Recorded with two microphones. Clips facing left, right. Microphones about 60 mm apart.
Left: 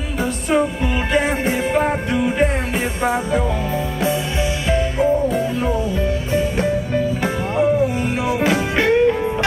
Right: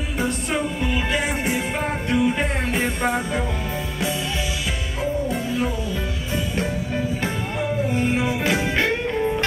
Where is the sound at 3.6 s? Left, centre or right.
Centre.